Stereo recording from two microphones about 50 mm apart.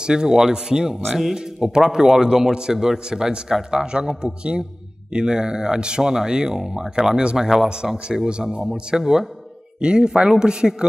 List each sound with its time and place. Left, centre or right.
0.0 s a man's voice: centre